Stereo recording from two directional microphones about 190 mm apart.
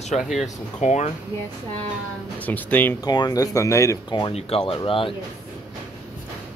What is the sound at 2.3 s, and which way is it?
Speech, 10° left (ahead or behind).